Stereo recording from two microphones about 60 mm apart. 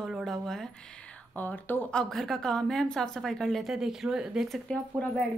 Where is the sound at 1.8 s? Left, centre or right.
Centre.